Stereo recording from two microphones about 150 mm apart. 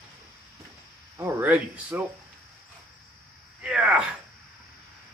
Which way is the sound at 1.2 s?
15° right (ahead or behind).